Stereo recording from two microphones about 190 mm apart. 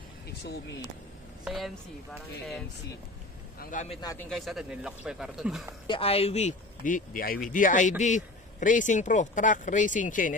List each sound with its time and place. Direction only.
1.4 s a woman's voice: centre (ahead or behind)
3.5 s speech: 40° left (ahead or behind)
4.0 s speech: 15° left (ahead or behind)
4.3 s speech: centre (ahead or behind)
5.9 s a man's voice: 30° left (ahead or behind)